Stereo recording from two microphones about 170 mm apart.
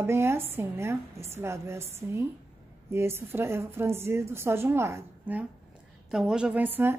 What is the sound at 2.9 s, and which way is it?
A woman's voice, 15° right (ahead or behind).